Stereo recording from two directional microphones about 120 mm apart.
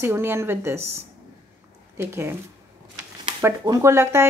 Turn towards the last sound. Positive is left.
turn(degrees=-20)  # may be behind; listen again after turning